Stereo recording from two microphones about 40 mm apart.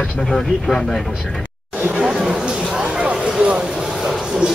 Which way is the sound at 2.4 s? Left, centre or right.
Right.